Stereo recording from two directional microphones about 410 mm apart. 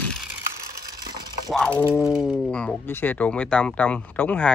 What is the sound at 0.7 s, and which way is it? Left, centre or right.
Crushing, right.